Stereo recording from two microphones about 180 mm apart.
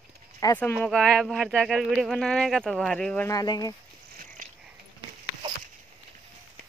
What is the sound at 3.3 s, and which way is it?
Speech, 20° left (ahead or behind).